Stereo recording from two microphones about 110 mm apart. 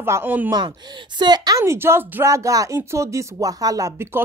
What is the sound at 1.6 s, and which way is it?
Speech, 25° right (ahead or behind).